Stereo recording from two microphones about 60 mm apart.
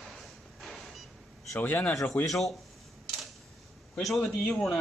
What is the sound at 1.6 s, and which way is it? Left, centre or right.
Speech, left.